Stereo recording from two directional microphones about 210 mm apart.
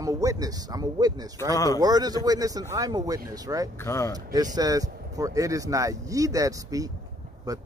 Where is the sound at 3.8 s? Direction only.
15° left (ahead or behind).